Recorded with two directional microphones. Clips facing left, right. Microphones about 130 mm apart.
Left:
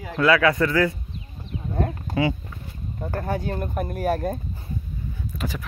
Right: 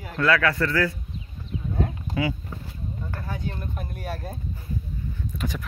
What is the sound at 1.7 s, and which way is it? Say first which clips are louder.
Sheep: left 3 dB; 50° left (ahead or behind).